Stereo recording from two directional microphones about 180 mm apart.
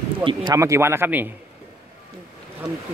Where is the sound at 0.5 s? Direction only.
15° right (ahead or behind).